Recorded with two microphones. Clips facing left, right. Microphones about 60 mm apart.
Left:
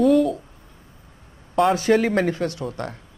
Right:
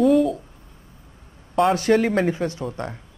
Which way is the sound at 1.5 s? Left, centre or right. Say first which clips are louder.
Even; centre.